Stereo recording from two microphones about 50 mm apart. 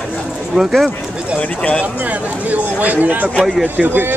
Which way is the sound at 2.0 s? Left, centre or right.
Right.